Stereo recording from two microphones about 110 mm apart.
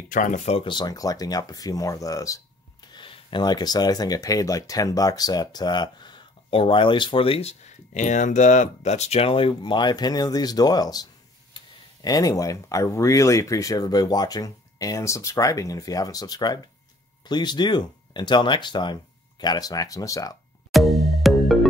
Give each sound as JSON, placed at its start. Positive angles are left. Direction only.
{"t": 0.3, "sound": "speech", "side_deg": 70}
{"t": 0.7, "sound": "speech", "side_deg": 40}
{"t": 20.7, "sound": "music", "side_deg": 0}